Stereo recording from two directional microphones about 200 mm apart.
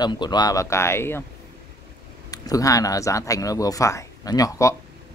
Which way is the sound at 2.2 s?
15° left (ahead or behind).